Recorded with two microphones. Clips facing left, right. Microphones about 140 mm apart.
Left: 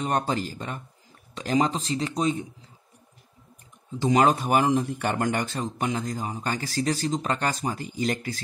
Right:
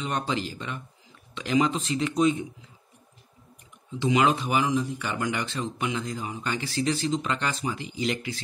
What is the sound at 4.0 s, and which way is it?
A man's voice, 40° left (ahead or behind).